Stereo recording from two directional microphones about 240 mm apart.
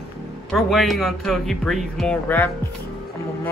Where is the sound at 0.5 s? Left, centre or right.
Centre.